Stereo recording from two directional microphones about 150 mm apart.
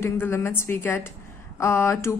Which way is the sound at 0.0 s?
15° left (ahead or behind).